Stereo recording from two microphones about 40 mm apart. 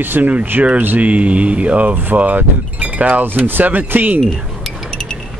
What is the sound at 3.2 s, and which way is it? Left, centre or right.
Speech, right.